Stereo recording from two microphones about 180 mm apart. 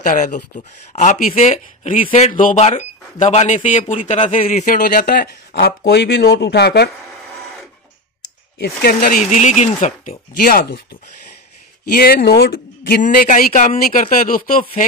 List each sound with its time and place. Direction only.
0.0 s speech: 45° left (ahead or behind)
4.5 s speech: 50° left (ahead or behind); by 6.9 s 65° left (ahead or behind)
8.5 s speech: 60° left (ahead or behind)
11.9 s speech: 55° left (ahead or behind)